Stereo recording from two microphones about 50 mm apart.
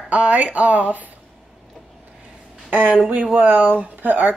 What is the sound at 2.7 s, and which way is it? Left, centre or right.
Speech, right.